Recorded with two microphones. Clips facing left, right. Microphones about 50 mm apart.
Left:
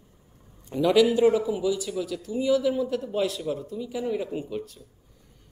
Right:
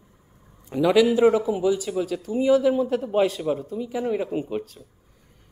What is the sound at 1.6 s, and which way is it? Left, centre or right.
A man's voice, right.